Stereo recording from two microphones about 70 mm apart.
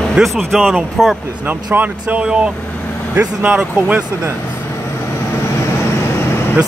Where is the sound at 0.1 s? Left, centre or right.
Centre.